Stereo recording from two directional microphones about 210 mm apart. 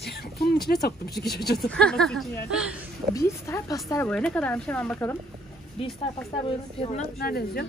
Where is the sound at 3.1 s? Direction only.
15° left (ahead or behind).